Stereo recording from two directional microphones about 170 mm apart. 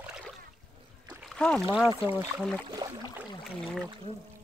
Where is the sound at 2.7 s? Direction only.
20° right (ahead or behind).